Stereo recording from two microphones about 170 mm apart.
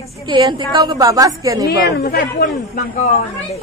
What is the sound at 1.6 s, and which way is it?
Speech, 75° left (ahead or behind).